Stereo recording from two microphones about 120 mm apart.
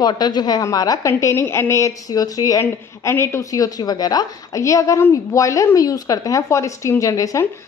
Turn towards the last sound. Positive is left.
turn(degrees=25)  # may be behind; listen again after turning